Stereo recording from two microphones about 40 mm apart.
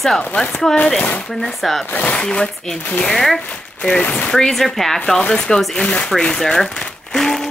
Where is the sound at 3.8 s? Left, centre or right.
Left.